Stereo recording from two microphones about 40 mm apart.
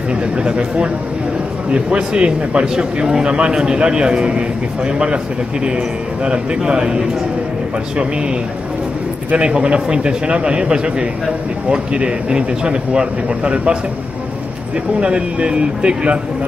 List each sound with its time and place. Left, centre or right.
0.1 s a man's voice: right
6.2 s a man's voice: right
9.4 s a man's voice: right
15.0 s a man's voice: right